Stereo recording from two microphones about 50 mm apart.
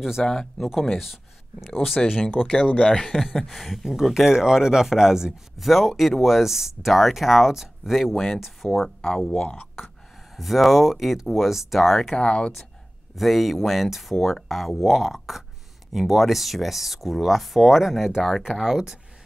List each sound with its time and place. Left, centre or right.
0.2 s speech: centre
2.0 s speech: centre
2.4 s speech: left
2.9 s speech: centre
3.2 s speech: centre
9.0 s speech: centre
10.3 s speech: centre
12.2 s speech: centre
13.1 s speech: centre